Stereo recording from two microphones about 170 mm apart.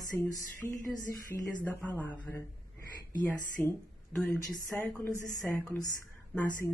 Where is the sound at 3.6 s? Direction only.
10° left (ahead or behind).